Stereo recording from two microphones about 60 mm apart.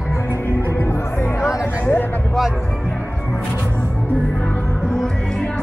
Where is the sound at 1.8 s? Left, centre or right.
Left.